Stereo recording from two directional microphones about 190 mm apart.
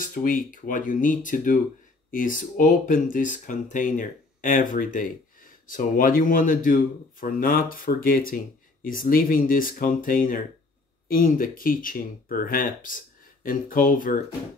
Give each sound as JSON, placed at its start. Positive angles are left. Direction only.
{"t": 0.0, "sound": "speech", "side_deg": 45}